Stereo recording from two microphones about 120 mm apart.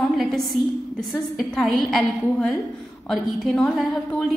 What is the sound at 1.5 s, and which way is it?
A woman's voice, centre (ahead or behind).